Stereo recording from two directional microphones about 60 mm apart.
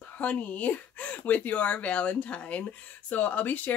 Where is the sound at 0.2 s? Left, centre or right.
Left.